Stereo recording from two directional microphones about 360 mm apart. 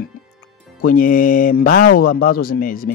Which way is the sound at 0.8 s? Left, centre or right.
Left.